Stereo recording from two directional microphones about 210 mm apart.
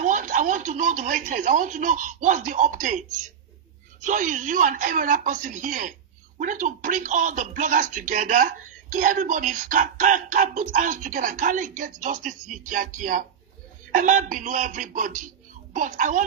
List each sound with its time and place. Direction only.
0.0 s speech: 40° right (ahead or behind)